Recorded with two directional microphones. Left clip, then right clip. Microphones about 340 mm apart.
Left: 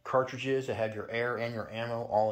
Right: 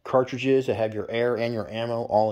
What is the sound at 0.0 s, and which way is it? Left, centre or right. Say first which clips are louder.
Speech: right 7 dB; right.